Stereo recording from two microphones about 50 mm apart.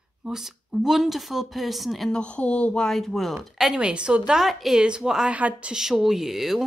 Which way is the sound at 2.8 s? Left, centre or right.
Centre.